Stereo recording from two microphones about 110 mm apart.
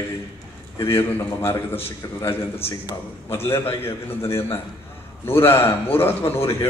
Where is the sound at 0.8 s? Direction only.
25° left (ahead or behind).